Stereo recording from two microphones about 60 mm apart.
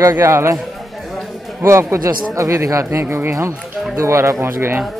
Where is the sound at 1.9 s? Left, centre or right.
Right.